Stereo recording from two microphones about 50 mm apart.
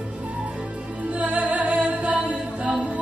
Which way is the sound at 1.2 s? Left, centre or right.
Right.